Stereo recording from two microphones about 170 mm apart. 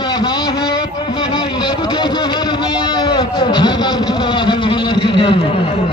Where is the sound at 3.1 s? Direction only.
25° left (ahead or behind).